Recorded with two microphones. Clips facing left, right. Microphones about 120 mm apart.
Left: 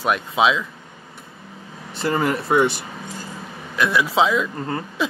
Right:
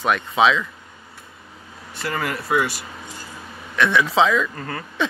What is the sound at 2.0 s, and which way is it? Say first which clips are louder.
Speech: left 5 dB; 25° left (ahead or behind).